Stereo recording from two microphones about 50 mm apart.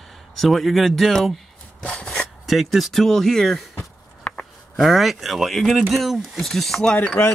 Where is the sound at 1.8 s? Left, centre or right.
Centre.